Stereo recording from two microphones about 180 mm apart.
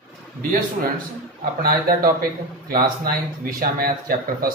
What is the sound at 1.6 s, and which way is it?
A man's voice, 55° right (ahead or behind).